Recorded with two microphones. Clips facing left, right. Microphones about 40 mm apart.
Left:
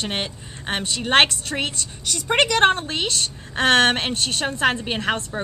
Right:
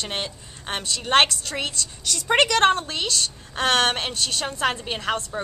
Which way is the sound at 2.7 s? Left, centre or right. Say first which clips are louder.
Left 1 dB; left.